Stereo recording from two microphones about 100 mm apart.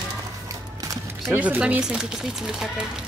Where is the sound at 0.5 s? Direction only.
35° right (ahead or behind).